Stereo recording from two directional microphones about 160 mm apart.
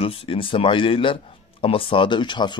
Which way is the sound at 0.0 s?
35° left (ahead or behind).